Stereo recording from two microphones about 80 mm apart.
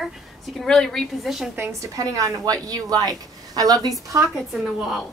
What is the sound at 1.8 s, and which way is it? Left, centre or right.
A woman's voice, right.